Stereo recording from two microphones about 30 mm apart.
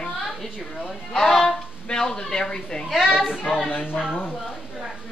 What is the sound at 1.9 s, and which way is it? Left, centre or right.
A woman's voice, left.